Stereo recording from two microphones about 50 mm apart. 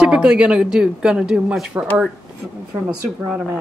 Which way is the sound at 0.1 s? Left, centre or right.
Centre.